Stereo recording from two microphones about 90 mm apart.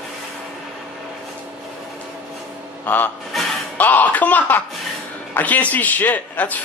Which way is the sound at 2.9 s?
15° left (ahead or behind).